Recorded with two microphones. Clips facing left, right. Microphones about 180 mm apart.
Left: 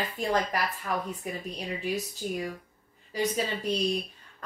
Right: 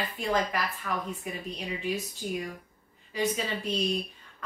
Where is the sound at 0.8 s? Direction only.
30° left (ahead or behind).